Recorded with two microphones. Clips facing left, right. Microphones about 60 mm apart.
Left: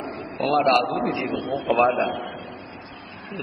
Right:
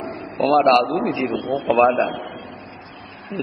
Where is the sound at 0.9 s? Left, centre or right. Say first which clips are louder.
Right 3 dB; right.